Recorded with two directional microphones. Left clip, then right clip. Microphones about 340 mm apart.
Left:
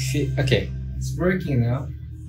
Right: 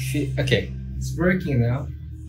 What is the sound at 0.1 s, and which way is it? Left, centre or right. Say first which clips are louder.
Speech: even; centre.